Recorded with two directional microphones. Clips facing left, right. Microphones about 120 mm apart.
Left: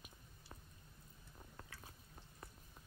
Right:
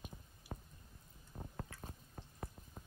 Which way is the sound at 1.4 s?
40° right (ahead or behind).